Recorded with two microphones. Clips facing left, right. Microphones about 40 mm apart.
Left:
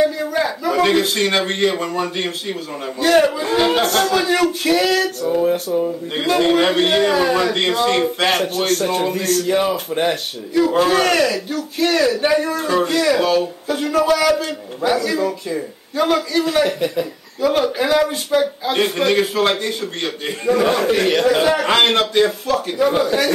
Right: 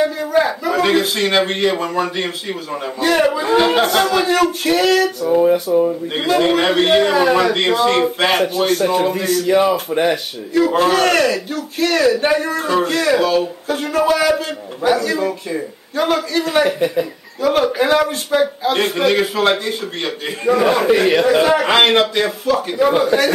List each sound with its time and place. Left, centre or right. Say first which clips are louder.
0.2 s a man's voice: right 3 dB; centre; by 10.1 s right
10.5 s a man's voice: right 1 dB; centre
22.9 s speech: right 2 dB; centre